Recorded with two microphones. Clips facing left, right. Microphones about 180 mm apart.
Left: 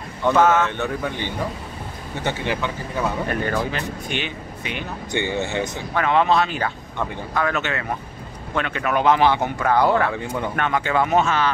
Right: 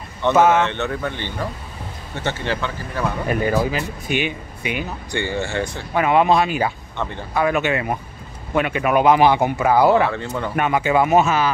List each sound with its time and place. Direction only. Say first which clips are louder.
0.3 s speech: right 2 dB; 10° right (ahead or behind)
0.7 s speech: right 1 dB; 5° left (ahead or behind)
3.3 s speech: right 4 dB; 10° right (ahead or behind)
5.1 s speech: even; 20° left (ahead or behind)
5.9 s speech: right 3 dB; 10° right (ahead or behind)
10.1 s speech: even; 10° left (ahead or behind)
10.5 s speech: right 5 dB; 10° right (ahead or behind)